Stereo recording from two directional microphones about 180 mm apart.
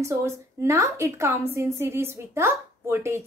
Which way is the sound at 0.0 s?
15° right (ahead or behind).